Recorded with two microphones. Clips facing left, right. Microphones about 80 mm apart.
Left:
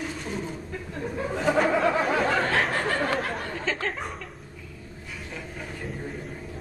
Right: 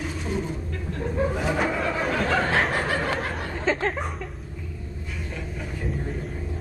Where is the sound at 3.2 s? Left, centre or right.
Centre.